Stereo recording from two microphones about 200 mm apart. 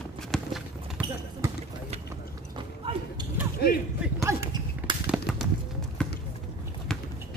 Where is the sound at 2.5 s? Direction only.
25° right (ahead or behind).